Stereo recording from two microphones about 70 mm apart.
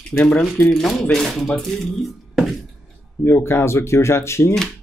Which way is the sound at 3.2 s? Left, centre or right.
Left.